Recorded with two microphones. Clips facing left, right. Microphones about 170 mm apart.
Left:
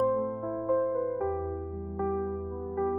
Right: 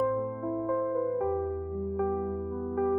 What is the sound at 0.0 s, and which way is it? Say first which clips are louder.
Music: left 1 dB; 10° right (ahead or behind).